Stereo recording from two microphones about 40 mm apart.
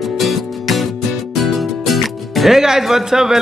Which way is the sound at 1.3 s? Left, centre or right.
Centre.